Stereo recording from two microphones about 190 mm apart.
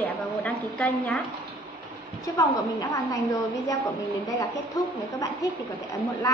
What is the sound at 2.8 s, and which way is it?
Speech, 20° left (ahead or behind).